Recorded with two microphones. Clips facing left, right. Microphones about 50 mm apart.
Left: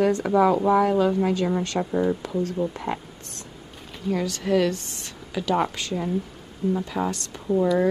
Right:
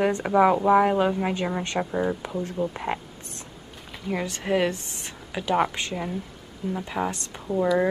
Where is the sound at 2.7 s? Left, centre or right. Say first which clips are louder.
Even; right.